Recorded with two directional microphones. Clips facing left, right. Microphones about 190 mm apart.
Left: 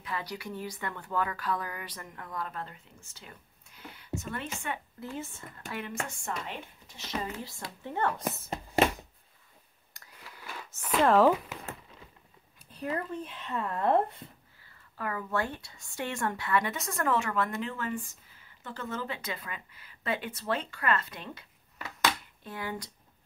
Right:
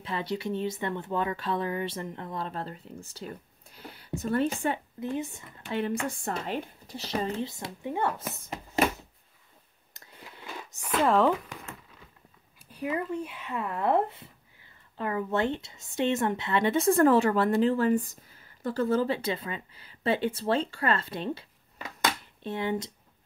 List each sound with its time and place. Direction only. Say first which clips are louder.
0.0 s speech: right 6 dB; 25° right (ahead or behind)
5.0 s speech: right 7 dB; 15° right (ahead or behind)
5.7 s speech: right 8 dB; 30° right (ahead or behind)
7.4 s speech: right 6 dB; 20° right (ahead or behind)
9.9 s whispering: right 3 dB; 25° right (ahead or behind)
11.0 s speech: left 1 dB; centre (ahead or behind)
12.7 s speech: right 3 dB; 10° right (ahead or behind)
15.0 s speech: right 5 dB; 25° right (ahead or behind)
21.8 s a sound: even; 25° right (ahead or behind)